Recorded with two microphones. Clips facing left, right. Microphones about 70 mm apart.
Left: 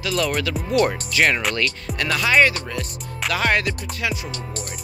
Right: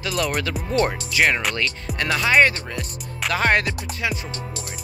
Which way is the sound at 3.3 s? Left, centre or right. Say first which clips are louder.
Right 1 dB; right.